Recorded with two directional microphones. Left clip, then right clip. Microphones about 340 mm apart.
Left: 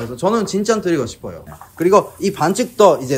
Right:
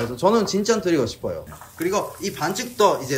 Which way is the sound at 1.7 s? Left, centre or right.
Centre.